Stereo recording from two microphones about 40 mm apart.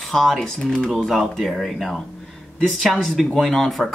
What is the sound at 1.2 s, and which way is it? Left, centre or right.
Speech, centre.